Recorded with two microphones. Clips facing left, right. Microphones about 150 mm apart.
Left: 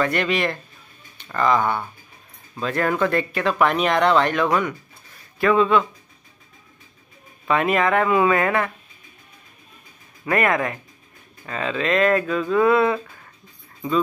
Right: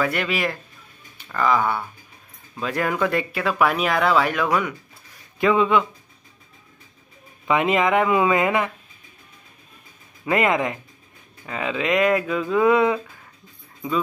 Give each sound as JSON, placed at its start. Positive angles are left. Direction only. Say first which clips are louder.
{"t": 0.0, "sound": "speech", "louder": "left 2 dB", "side_deg": -5}
{"t": 7.4, "sound": "speech", "louder": "even", "side_deg": -15}
{"t": 10.2, "sound": "speech", "louder": "even", "side_deg": -20}